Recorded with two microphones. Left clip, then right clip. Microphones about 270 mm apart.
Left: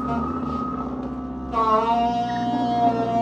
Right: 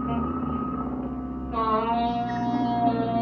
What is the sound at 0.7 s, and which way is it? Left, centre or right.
Vehicle, left.